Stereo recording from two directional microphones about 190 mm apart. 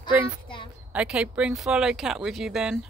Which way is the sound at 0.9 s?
5° right (ahead or behind).